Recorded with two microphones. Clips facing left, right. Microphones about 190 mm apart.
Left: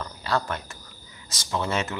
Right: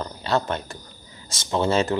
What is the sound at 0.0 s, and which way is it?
Speech, 25° right (ahead or behind).